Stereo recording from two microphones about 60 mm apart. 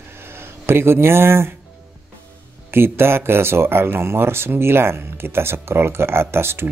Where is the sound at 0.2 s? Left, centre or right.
Right.